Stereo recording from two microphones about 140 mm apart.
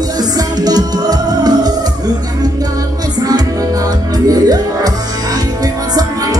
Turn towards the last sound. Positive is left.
turn(degrees=-25)  # may be behind; listen again after turning